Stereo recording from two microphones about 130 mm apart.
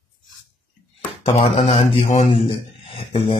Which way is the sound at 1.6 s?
55° left (ahead or behind).